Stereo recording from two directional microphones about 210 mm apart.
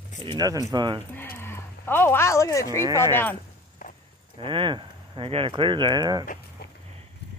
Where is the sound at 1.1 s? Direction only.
10° left (ahead or behind).